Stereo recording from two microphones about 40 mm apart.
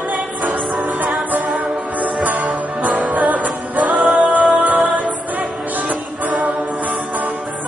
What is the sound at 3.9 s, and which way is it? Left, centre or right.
Music, centre.